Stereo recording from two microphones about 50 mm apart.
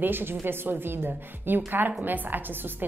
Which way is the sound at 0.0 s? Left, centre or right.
Right.